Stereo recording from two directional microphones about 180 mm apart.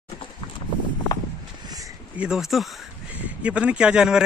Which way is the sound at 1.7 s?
20° right (ahead or behind).